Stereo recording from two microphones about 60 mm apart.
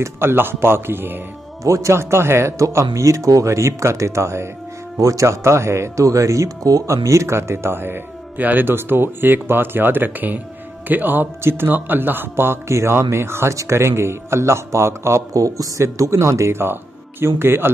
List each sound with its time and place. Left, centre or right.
0.0 s speech: right
1.6 s speech: right